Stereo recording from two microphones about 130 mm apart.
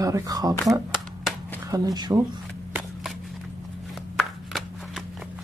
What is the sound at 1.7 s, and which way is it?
Speech, 30° right (ahead or behind).